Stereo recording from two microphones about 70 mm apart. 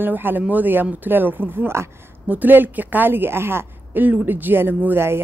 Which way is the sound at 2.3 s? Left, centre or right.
Right.